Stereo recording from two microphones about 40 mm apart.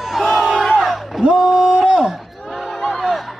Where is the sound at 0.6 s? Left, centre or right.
Centre.